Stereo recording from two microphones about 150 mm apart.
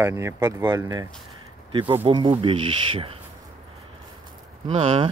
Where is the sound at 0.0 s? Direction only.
20° right (ahead or behind).